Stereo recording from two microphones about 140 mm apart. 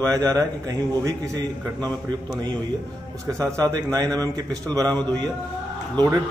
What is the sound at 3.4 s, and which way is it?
A man's voice, 25° right (ahead or behind).